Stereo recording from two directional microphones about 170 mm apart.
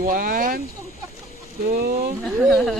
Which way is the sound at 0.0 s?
55° right (ahead or behind).